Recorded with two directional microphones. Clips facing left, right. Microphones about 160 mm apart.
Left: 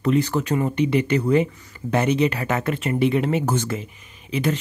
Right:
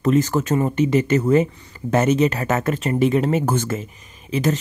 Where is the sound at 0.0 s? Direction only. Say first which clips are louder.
Right 2 dB; 45° right (ahead or behind).